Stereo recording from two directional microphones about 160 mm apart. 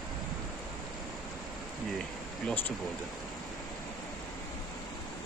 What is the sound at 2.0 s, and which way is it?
Speech, 5° left (ahead or behind).